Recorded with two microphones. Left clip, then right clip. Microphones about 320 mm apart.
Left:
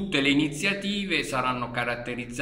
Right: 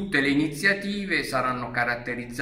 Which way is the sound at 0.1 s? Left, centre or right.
Centre.